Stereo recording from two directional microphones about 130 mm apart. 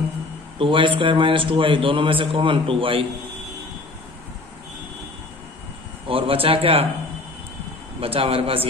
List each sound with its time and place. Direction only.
0.6 s a man's voice: 40° right (ahead or behind)
6.0 s a man's voice: 45° right (ahead or behind)
8.0 s a man's voice: 45° right (ahead or behind)